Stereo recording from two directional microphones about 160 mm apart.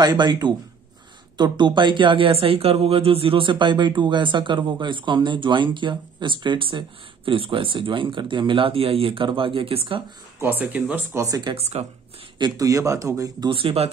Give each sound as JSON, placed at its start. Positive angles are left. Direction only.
{"t": 0.0, "sound": "speech", "side_deg": -25}
{"t": 10.4, "sound": "speech", "side_deg": -10}
{"t": 11.2, "sound": "speech", "side_deg": -20}
{"t": 11.8, "sound": "speech", "side_deg": -45}
{"t": 12.4, "sound": "speech", "side_deg": -25}